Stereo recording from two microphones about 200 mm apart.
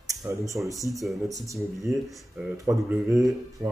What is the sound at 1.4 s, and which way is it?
Speech, 15° right (ahead or behind).